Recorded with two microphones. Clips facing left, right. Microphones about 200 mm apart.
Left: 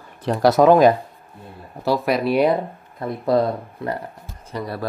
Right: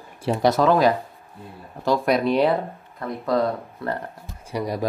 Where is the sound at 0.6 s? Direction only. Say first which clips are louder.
Left 7 dB; 20° left (ahead or behind).